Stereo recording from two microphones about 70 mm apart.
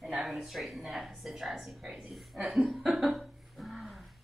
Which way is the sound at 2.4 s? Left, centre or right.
Centre.